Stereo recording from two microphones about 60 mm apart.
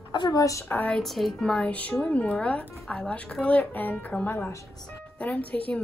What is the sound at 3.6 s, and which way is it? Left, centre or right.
Speech, left.